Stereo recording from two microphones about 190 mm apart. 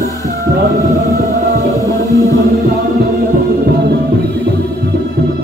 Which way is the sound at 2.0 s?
15° left (ahead or behind).